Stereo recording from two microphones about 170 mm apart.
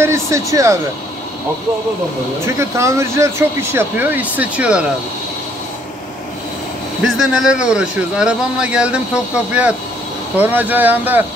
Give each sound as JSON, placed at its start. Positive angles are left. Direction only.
{"t": 0.0, "sound": "speech", "side_deg": -15}
{"t": 2.4, "sound": "speech", "side_deg": -15}
{"t": 7.0, "sound": "speech", "side_deg": 0}